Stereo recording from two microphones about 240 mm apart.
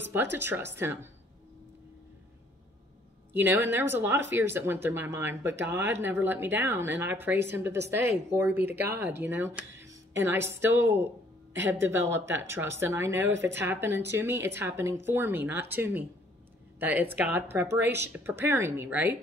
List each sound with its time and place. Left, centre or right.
0.1 s a woman's voice: centre
3.3 s a woman's voice: centre